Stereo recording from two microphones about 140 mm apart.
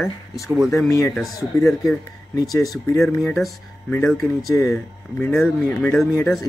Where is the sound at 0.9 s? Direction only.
20° left (ahead or behind).